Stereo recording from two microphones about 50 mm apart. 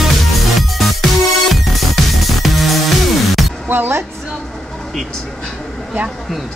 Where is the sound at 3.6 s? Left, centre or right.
Right.